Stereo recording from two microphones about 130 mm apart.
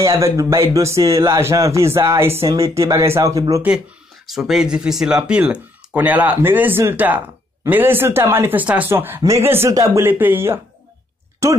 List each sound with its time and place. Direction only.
0.0 s speech: 25° right (ahead or behind)
4.3 s speech: centre (ahead or behind); by 11.6 s 20° right (ahead or behind)